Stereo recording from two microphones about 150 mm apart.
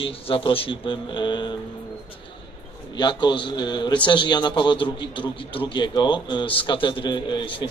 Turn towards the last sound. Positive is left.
turn(degrees=35)  # may be behind; listen again after turning